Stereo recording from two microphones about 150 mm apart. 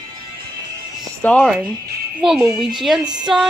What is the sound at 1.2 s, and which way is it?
Speech, 10° left (ahead or behind).